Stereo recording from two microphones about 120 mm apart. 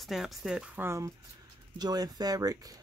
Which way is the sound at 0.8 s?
20° right (ahead or behind).